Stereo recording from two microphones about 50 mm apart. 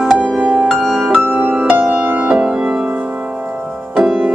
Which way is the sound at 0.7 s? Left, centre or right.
Centre.